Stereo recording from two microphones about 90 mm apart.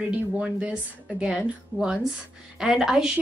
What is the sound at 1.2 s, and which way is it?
Speech, 5° right (ahead or behind).